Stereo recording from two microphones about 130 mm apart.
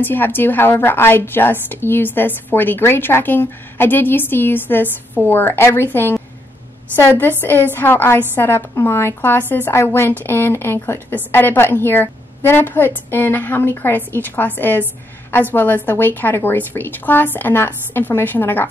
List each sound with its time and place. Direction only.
0.0 s a woman's voice: 15° left (ahead or behind)